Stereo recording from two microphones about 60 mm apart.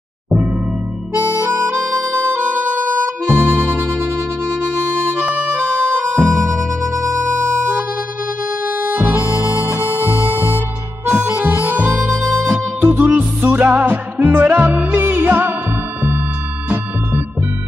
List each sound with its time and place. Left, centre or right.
3.3 s music: right
6.1 s music: right
8.6 s harmonica: right
11.3 s harmonica: right